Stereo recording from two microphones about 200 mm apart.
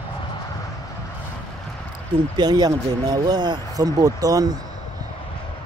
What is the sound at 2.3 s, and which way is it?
Speech, 20° right (ahead or behind).